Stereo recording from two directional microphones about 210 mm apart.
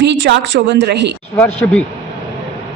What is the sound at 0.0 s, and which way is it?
A woman's voice, 55° right (ahead or behind).